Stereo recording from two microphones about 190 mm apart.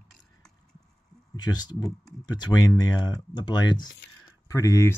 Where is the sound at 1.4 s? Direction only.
20° left (ahead or behind).